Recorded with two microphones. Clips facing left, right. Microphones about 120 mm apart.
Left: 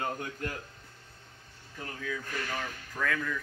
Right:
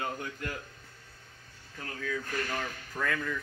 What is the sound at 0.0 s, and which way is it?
Speech, 35° left (ahead or behind).